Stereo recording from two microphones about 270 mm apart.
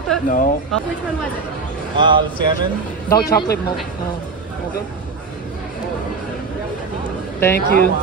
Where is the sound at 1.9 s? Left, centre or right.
Centre.